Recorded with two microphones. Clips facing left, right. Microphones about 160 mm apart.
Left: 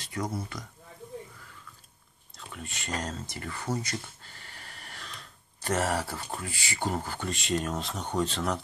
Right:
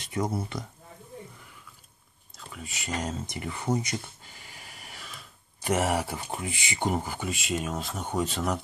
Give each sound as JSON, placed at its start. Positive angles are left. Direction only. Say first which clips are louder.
{"t": 0.0, "sound": "speech", "louder": "right 4 dB", "side_deg": -25}
{"t": 2.3, "sound": "speech", "louder": "even", "side_deg": 0}